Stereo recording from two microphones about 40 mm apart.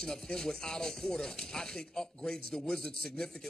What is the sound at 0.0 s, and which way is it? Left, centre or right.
A man's voice, centre.